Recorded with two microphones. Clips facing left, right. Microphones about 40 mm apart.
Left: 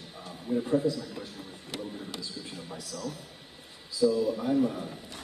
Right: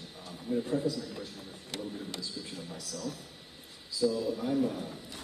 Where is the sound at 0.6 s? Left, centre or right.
Left.